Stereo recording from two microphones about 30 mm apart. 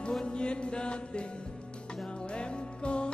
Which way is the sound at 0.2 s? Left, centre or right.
Left.